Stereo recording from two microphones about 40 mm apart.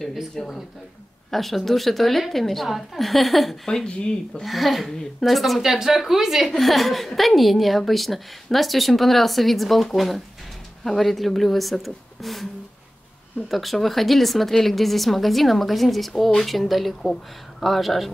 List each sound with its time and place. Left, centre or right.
0.4 s speech: centre
1.3 s a woman's voice: centre
3.6 s speech: centre
4.5 s a woman's voice: centre
13.5 s a woman's voice: centre
17.0 s speech: centre
17.6 s a woman's voice: centre